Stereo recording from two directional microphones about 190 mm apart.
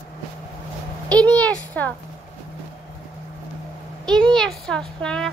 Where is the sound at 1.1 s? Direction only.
5° left (ahead or behind).